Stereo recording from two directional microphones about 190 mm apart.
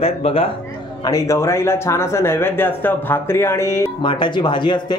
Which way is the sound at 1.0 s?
15° left (ahead or behind).